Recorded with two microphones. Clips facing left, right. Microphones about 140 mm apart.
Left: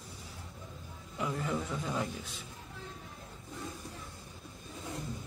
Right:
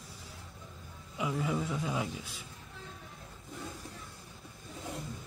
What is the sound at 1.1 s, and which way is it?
A man's voice, 5° right (ahead or behind).